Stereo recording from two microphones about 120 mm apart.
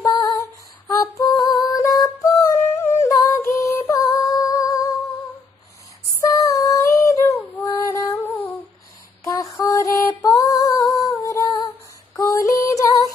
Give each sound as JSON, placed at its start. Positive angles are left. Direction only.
{"t": 0.0, "sound": "female singing", "side_deg": 30}
{"t": 1.4, "sound": "music", "side_deg": 35}
{"t": 2.8, "sound": "a sound", "side_deg": 25}
{"t": 3.9, "sound": "humming", "side_deg": 30}
{"t": 6.2, "sound": "female singing", "side_deg": 30}
{"t": 9.2, "sound": "music", "side_deg": 30}
{"t": 12.2, "sound": "female singing", "side_deg": 30}